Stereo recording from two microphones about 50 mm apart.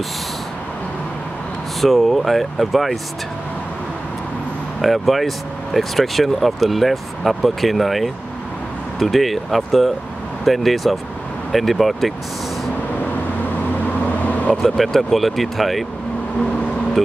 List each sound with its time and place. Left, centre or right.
1.8 s speech: centre
4.8 s speech: centre
14.0 s vehicle: left
14.6 s speech: centre